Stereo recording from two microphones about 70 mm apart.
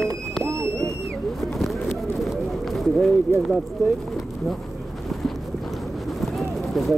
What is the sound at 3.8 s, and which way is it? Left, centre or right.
Speech, right.